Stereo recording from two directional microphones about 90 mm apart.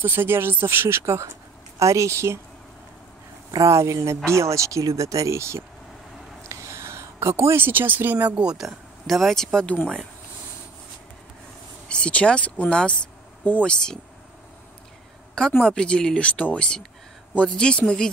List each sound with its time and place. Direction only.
0.0 s speech: 25° right (ahead or behind)
3.5 s speech: 35° right (ahead or behind)
6.5 s a sound: 35° right (ahead or behind)
8.4 s speech: 5° right (ahead or behind)
11.9 s speech: 15° left (ahead or behind)
15.6 s speech: 10° left (ahead or behind)